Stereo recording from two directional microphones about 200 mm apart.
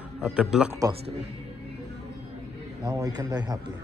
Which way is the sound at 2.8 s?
20° right (ahead or behind).